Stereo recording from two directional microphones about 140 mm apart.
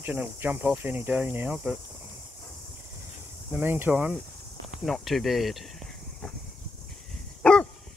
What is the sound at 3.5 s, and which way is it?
Speech, 15° right (ahead or behind).